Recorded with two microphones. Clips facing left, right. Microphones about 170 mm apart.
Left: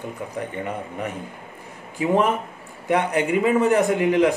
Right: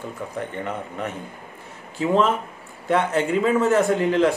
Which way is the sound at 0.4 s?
10° left (ahead or behind).